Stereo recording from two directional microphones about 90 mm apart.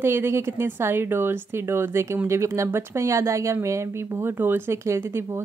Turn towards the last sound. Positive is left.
turn(degrees=-30)  # may be behind; listen again after turning